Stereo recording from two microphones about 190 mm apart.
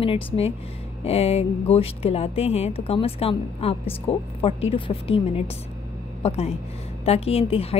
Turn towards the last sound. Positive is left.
turn(degrees=30)  # may be behind; listen again after turning